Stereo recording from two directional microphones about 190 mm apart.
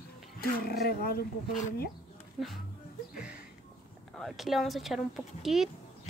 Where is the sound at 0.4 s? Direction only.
55° left (ahead or behind).